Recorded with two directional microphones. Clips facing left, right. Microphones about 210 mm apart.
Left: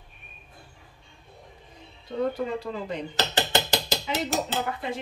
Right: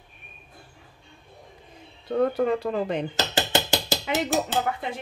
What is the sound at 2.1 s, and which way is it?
Speech, 60° right (ahead or behind).